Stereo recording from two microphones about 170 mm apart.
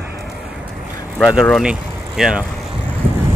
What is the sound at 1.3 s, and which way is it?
Speech, centre (ahead or behind).